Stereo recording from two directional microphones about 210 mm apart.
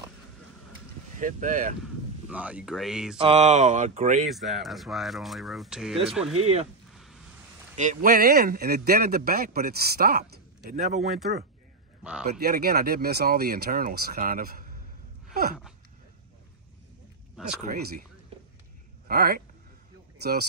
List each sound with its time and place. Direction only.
1.2 s speech: 35° right (ahead or behind)
2.2 s speech: 5° right (ahead or behind)
3.2 s speech: 30° right (ahead or behind)
4.3 s speech: centre (ahead or behind)
7.7 s speech: 35° right (ahead or behind)
12.0 s speech: 5° right (ahead or behind)
12.3 s speech: 50° right (ahead or behind)
17.6 s speech: 35° right (ahead or behind)
19.0 s speech: 45° right (ahead or behind)